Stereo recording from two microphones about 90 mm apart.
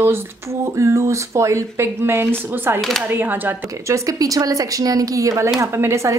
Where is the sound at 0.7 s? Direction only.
35° right (ahead or behind).